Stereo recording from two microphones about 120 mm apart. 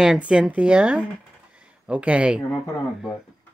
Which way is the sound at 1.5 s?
10° right (ahead or behind).